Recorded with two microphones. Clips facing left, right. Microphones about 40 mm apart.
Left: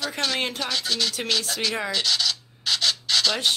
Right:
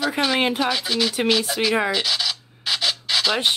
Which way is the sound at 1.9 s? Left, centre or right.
Centre.